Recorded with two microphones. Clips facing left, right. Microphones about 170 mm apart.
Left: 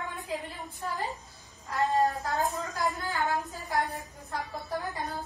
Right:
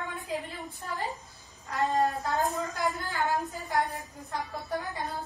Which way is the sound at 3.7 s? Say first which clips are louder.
Right 1 dB; 20° right (ahead or behind).